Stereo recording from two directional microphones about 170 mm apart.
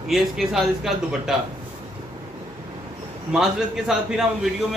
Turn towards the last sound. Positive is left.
turn(degrees=0)  # may be behind; listen again after turning